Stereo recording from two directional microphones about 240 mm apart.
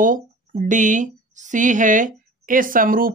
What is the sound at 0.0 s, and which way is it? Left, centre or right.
Speech, right.